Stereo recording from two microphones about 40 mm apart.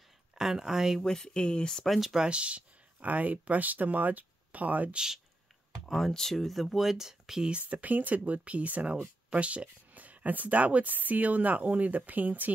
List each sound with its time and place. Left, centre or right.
0.4 s speech: centre
1.0 s speech: centre
1.9 s speech: centre
2.1 s speech: right
4.9 s speech: centre
5.9 s speech: centre
7.4 s a woman's voice: right